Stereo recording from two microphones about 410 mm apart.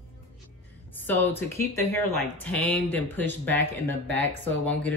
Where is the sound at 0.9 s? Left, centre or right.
Centre.